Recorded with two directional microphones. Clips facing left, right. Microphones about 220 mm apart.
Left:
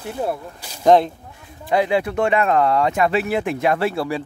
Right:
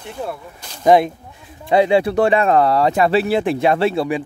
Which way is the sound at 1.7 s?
25° right (ahead or behind).